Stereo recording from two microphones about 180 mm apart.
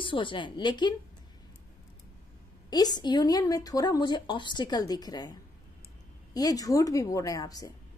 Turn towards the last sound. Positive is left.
turn(degrees=20)  # may be behind; listen again after turning